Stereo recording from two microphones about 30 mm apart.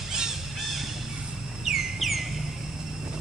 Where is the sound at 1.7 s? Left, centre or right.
Centre.